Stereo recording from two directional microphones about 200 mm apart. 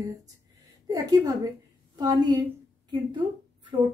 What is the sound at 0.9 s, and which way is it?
A woman's voice, 20° right (ahead or behind).